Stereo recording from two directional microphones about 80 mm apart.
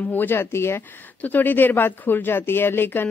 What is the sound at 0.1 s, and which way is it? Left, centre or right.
Speech, left.